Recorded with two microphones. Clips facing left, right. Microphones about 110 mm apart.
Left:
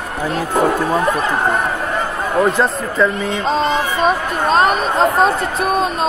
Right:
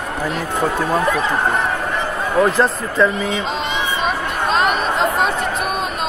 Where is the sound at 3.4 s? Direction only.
40° left (ahead or behind).